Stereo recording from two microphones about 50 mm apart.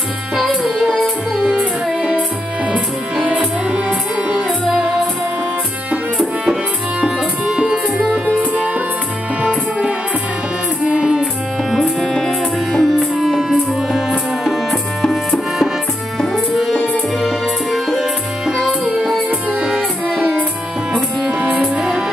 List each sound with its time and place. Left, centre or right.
0.4 s music: centre
7.0 s music: centre
8.4 s music: right
11.7 s music: centre
19.6 s music: right
21.7 s music: centre